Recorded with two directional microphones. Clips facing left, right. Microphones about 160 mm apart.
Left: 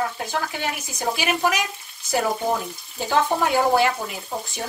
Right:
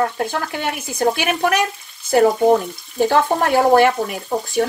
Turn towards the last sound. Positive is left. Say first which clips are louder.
# right 11 dB
turn(degrees=-55)  # may be behind; listen again after turning